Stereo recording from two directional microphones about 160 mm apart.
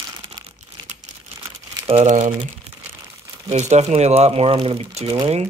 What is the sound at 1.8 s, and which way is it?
Speech, 45° right (ahead or behind).